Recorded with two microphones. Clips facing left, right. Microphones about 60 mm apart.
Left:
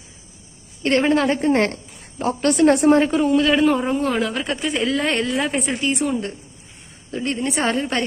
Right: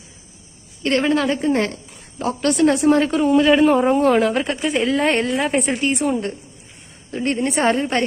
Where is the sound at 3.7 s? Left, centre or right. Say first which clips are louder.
Right 5 dB; right.